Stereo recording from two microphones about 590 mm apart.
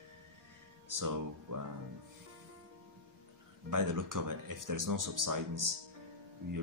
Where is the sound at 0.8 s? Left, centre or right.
Right.